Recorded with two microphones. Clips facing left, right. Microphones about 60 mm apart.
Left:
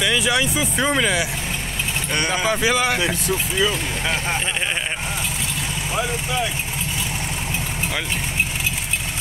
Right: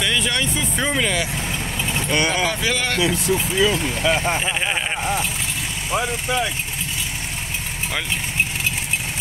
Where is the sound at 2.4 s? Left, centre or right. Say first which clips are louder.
Left 3 dB; centre.